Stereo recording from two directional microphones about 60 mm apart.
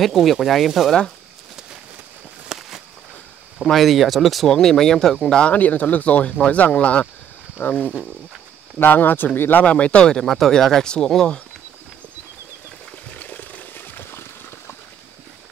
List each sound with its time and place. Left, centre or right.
0.0 s speech: centre
2.4 s a sound: centre
3.6 s speech: centre
5.4 s speech: left
8.7 s speech: left
9.7 s speech: centre
10.2 s speech: centre
13.1 s wild animals: left